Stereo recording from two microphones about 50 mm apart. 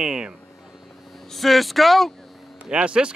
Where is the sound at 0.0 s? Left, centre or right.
Centre.